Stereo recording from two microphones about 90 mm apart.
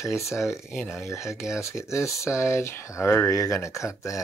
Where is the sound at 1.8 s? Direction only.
30° left (ahead or behind).